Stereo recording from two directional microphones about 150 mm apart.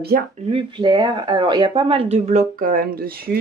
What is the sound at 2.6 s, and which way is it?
Speech, 75° right (ahead or behind).